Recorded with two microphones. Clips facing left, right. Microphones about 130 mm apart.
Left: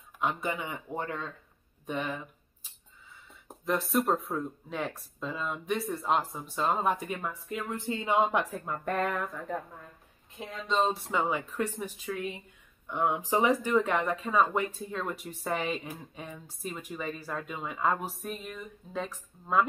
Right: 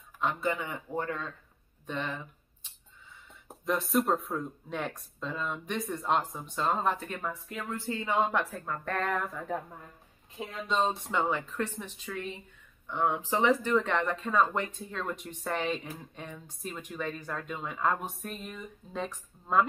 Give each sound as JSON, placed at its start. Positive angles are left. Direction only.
{"t": 0.2, "sound": "speech", "side_deg": 15}
{"t": 3.4, "sound": "speech", "side_deg": 0}
{"t": 7.7, "sound": "speech", "side_deg": 20}
{"t": 9.1, "sound": "speech", "side_deg": 0}
{"t": 10.7, "sound": "speech", "side_deg": 0}